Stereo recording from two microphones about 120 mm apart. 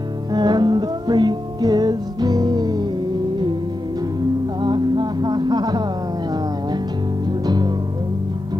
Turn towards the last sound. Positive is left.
turn(degrees=-35)  # may be behind; listen again after turning